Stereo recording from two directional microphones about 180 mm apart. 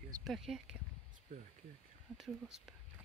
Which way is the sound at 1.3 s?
40° right (ahead or behind).